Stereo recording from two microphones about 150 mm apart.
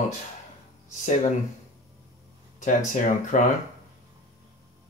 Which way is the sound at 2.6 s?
55° left (ahead or behind).